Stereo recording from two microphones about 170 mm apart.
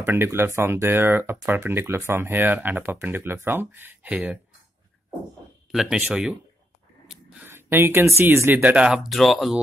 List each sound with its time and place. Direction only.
0.0 s speech: 15° right (ahead or behind)
5.7 s speech: 5° right (ahead or behind)